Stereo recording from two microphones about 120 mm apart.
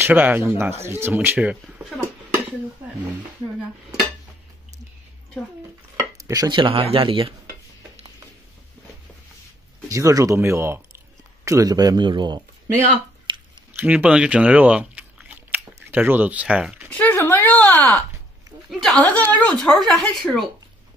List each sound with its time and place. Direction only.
0.0 s speech: 15° right (ahead or behind)
6.2 s speech: 30° right (ahead or behind)
6.6 s speech: 50° right (ahead or behind)
9.8 s speech: 25° right (ahead or behind)
13.3 s a sound: 40° right (ahead or behind)
13.7 s speech: 10° right (ahead or behind)
16.9 s a sound: 15° left (ahead or behind)
18.7 s speech: 5° left (ahead or behind)